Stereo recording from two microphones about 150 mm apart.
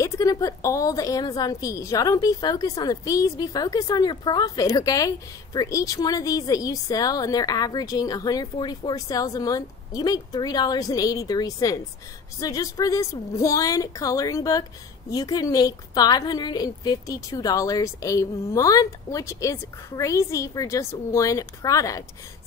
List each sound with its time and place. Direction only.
0.0 s a woman's voice: 25° left (ahead or behind)